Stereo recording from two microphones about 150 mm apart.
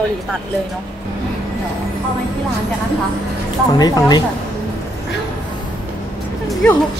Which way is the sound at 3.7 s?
25° left (ahead or behind).